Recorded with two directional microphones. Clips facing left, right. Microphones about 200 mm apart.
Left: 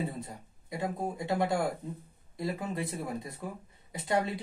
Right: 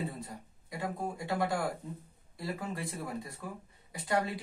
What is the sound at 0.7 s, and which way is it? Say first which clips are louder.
A woman's voice: left 3 dB; 20° left (ahead or behind).